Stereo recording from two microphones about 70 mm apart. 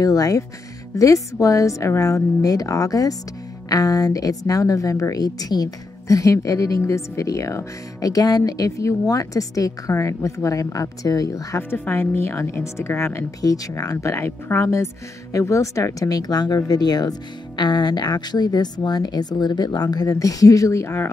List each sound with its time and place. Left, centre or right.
0.0 s a woman's voice: left
11.8 s a woman's voice: left
13.4 s a woman's voice: left
17.6 s speech: left
20.1 s a woman's voice: left